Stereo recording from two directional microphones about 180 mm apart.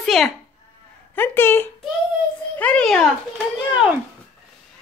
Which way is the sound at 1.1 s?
10° left (ahead or behind).